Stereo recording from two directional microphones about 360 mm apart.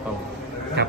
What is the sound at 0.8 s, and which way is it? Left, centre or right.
Speech, right.